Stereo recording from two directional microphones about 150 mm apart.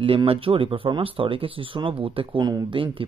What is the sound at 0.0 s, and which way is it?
Speech, 40° right (ahead or behind).